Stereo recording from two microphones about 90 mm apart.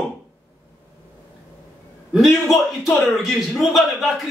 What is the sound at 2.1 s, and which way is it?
A man's voice, centre (ahead or behind).